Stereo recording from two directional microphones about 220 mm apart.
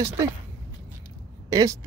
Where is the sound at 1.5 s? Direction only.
15° right (ahead or behind).